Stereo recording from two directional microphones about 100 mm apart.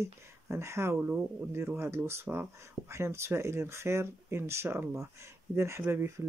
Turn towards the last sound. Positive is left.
turn(degrees=-25)  # may be behind; listen again after turning